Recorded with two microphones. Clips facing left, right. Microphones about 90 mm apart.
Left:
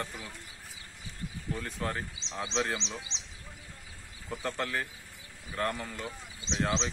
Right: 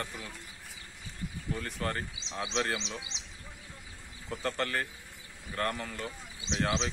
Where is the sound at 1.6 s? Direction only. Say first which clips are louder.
Even; 15° left (ahead or behind).